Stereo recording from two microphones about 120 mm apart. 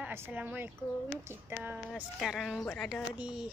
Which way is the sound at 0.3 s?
10° right (ahead or behind).